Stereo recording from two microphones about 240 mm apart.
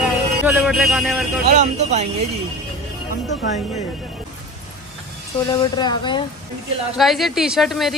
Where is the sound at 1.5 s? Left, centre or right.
Right.